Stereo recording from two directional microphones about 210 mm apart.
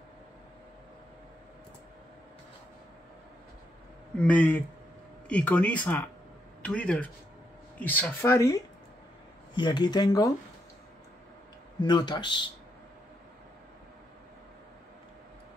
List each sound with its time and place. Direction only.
4.2 s speech: 5° left (ahead or behind)
9.6 s speech: 20° left (ahead or behind)
11.8 s speech: 20° left (ahead or behind)